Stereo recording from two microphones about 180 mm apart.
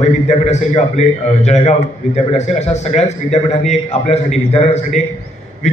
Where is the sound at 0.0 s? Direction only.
40° left (ahead or behind).